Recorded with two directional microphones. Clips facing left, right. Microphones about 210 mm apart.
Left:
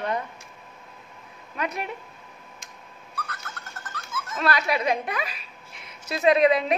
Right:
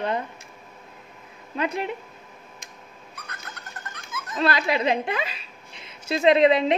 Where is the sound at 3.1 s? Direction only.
15° right (ahead or behind).